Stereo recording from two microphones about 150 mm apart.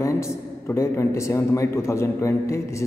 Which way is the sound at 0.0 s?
20° left (ahead or behind).